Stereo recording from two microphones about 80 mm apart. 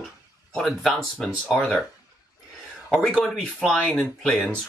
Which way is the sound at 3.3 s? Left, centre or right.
Centre.